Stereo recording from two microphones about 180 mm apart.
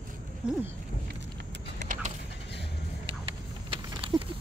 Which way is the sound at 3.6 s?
30° right (ahead or behind).